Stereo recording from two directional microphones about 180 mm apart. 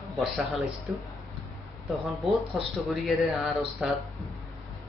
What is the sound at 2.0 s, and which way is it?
Speech, centre (ahead or behind).